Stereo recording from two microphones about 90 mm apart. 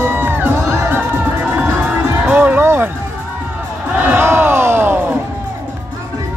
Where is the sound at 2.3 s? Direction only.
20° right (ahead or behind).